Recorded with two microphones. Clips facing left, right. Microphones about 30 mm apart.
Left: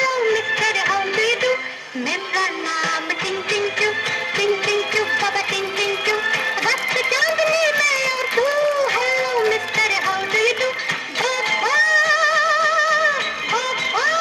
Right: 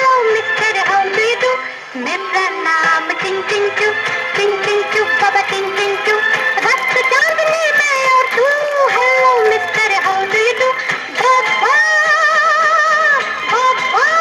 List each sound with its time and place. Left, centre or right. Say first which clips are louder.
0.6 s music: right 5 dB; right
6.2 s music: right 6 dB; right
7.0 s music: right 7 dB; right
7.9 s guitar: right 8 dB; right
8.5 s run: right 4 dB; right
9.0 s a sound: right 8 dB; right
9.8 s music: right 6 dB; right
11.6 s music: right 4 dB; right
12.5 s music: right 5 dB; right